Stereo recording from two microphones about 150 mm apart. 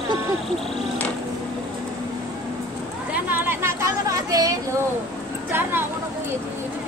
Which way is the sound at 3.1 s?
10° right (ahead or behind).